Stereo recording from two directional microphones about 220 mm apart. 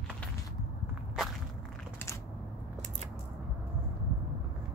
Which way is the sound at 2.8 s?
30° right (ahead or behind).